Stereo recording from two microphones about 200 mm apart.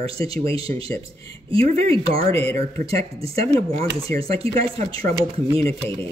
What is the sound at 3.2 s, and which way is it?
Speech, 30° right (ahead or behind).